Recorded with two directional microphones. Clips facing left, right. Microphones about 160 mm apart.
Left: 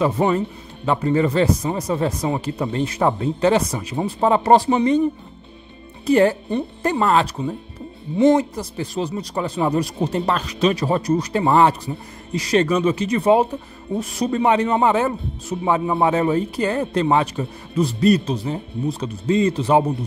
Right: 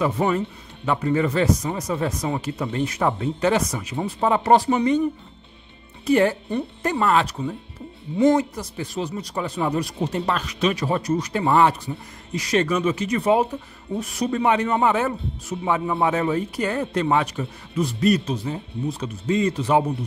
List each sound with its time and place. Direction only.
0.0 s speech: 30° left (ahead or behind)
6.0 s speech: 35° left (ahead or behind)